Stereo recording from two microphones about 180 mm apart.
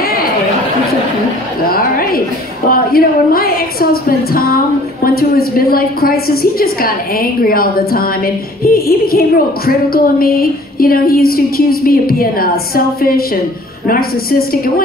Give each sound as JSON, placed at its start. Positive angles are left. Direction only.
{"t": 0.0, "sound": "chatter", "side_deg": 55}
{"t": 1.7, "sound": "a woman's voice", "side_deg": 55}